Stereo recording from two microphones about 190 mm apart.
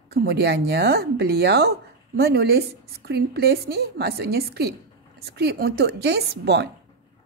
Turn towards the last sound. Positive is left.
turn(degrees=-60)  # may be behind; listen again after turning